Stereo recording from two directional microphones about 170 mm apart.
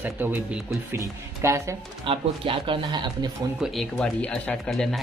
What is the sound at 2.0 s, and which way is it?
Speech, 30° right (ahead or behind).